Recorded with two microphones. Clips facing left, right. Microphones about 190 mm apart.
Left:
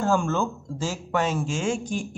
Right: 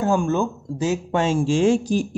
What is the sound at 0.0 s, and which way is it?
Speech, 15° right (ahead or behind).